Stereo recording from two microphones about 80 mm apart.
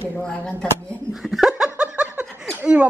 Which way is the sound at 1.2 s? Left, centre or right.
Centre.